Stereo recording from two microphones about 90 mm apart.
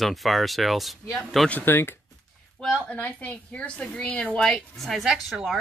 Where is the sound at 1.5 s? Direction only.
25° left (ahead or behind); by 5.6 s centre (ahead or behind).